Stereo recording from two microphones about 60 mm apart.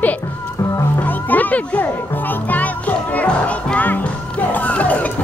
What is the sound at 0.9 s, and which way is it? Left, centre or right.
Music, left.